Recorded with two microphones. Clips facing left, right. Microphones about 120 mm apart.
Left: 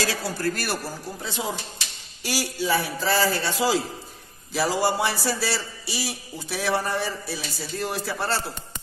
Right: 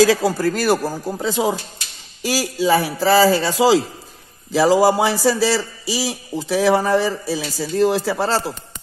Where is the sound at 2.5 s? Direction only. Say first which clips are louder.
Right 8 dB; 90° right.